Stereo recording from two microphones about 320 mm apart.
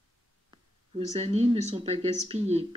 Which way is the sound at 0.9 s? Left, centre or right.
Centre.